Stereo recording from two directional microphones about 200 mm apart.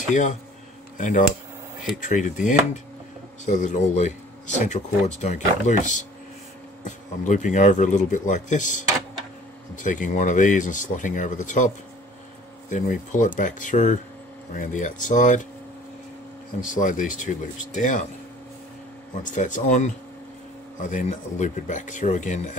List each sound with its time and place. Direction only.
0.1 s speech: 40° left (ahead or behind)
7.2 s speech: 40° left (ahead or behind)
16.7 s speech: 40° left (ahead or behind)
19.2 s speech: 40° left (ahead or behind)